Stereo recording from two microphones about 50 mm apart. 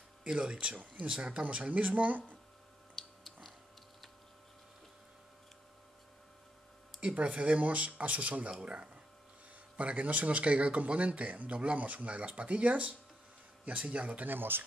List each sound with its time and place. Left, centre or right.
0.2 s speech: centre
1.7 s speech: right
3.0 s a sound: centre
7.0 s speech: right
9.8 s speech: right
14.3 s speech: right